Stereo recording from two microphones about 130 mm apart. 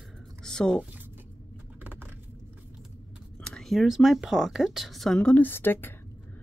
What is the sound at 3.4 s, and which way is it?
Speech, 5° left (ahead or behind).